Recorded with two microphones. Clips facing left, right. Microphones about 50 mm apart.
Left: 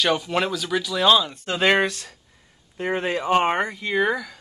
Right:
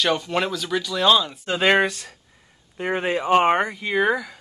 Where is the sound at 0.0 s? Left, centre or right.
Centre.